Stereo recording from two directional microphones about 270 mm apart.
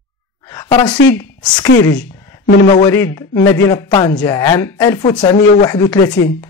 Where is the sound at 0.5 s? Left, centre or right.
Centre.